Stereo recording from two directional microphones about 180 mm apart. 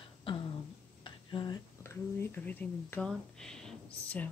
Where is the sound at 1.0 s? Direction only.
25° left (ahead or behind).